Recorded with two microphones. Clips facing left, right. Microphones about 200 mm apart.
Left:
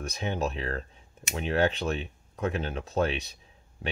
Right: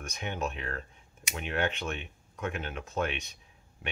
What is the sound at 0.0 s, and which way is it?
Speech, 35° left (ahead or behind).